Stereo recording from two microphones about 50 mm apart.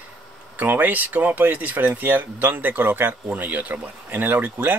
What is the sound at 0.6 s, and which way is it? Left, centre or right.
Speech, right.